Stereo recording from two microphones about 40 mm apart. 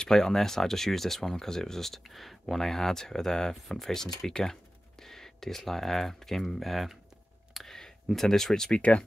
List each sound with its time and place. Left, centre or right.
0.0 s speech: centre
7.5 s a sound: centre
8.7 s speech: left